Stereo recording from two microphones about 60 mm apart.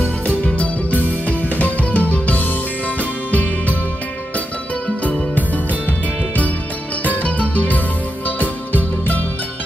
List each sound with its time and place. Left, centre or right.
0.5 s music: left
5.9 s music: left